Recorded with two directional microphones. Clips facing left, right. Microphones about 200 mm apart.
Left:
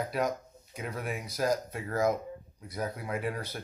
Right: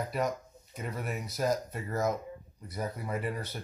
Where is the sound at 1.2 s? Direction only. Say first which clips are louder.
Left 1 dB; 5° right (ahead or behind).